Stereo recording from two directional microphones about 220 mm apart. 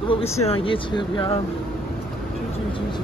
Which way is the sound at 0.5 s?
20° left (ahead or behind).